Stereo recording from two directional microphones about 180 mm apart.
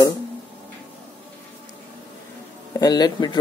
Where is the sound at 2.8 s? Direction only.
20° left (ahead or behind).